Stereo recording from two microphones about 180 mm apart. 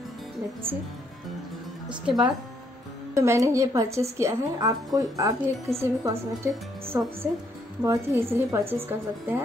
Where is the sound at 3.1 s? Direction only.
15° right (ahead or behind).